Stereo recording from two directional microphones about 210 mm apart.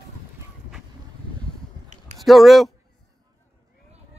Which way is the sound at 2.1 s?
Centre (ahead or behind).